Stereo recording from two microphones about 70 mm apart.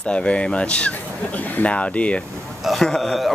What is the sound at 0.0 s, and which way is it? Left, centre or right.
Speech, centre.